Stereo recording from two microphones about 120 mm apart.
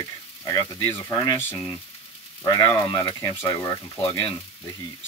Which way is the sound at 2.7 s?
40° left (ahead or behind).